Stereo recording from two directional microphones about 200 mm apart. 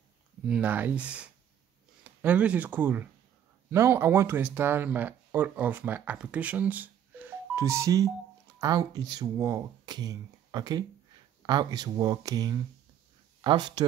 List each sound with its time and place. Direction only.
0.5 s speech: 5° right (ahead or behind)